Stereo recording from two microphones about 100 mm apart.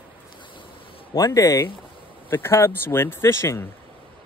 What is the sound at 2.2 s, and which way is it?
Speech, 20° left (ahead or behind).